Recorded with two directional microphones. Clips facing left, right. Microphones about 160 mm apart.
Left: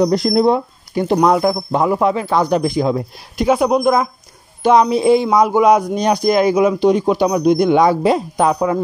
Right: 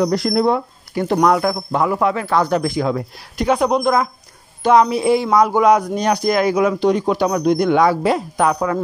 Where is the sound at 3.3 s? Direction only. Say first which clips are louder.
Left 2 dB; 10° left (ahead or behind).